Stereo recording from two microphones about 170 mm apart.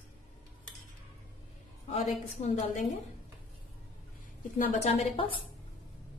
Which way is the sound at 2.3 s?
45° left (ahead or behind).